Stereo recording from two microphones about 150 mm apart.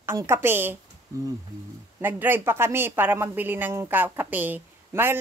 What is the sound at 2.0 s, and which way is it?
Speech, 15° right (ahead or behind).